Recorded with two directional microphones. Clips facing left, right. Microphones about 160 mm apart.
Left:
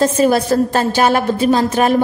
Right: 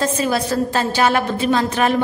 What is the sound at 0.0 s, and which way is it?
A woman's voice, 45° left (ahead or behind).